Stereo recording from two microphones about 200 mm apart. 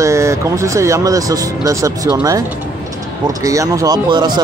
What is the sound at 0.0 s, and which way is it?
Speech, 15° right (ahead or behind).